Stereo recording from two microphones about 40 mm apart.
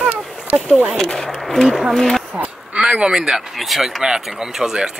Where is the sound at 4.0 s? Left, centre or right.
Centre.